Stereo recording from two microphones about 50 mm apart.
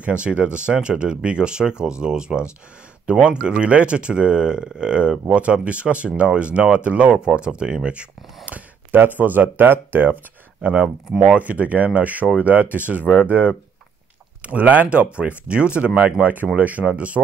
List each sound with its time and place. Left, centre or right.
0.0 s speech: right
8.5 s speech: right
10.6 s speech: right